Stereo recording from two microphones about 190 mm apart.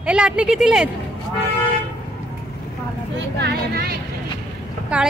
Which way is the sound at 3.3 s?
60° right (ahead or behind).